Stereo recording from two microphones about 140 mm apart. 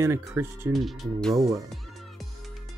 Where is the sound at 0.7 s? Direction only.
Centre (ahead or behind).